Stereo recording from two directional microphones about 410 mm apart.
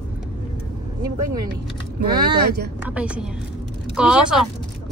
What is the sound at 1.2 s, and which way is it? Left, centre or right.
Speech, right.